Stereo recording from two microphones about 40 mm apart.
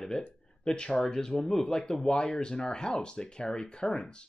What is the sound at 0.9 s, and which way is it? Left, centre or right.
Speech, centre.